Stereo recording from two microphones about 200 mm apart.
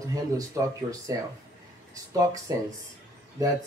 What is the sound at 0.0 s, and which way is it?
Speech, 15° right (ahead or behind).